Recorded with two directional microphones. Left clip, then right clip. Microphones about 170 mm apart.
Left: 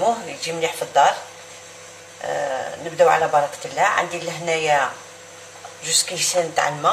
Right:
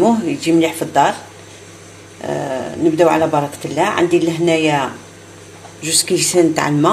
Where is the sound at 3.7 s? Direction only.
50° right (ahead or behind).